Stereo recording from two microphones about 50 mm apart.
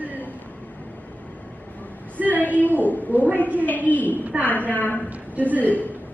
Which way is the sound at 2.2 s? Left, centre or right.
Left.